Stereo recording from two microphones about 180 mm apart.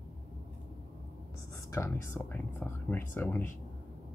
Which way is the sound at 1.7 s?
15° left (ahead or behind).